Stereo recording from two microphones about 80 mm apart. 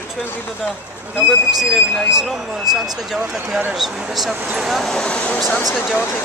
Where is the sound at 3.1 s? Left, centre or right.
Centre.